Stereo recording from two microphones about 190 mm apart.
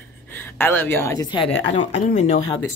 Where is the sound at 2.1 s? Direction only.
40° left (ahead or behind).